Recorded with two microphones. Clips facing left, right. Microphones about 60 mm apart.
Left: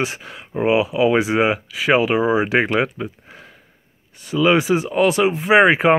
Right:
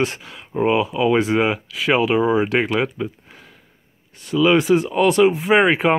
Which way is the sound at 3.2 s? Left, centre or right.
Centre.